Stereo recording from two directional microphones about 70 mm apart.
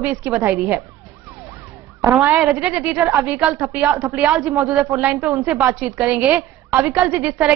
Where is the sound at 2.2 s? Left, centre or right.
Right.